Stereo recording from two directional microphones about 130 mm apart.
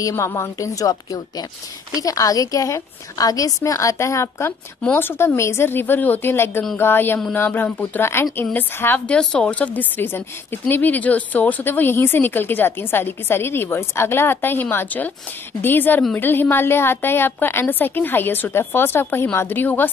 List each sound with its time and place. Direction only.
0.0 s a woman's voice: 20° left (ahead or behind)